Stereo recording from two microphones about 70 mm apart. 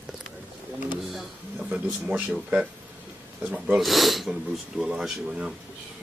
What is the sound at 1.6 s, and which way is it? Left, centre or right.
Speech, centre.